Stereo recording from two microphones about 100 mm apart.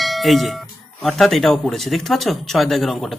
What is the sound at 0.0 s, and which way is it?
Speech, centre (ahead or behind).